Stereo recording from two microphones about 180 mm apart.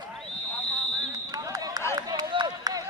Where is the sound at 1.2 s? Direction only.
20° right (ahead or behind).